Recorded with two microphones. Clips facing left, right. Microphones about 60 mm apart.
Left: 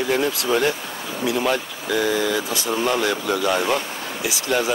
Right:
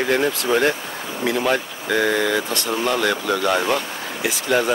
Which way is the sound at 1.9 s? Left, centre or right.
Right.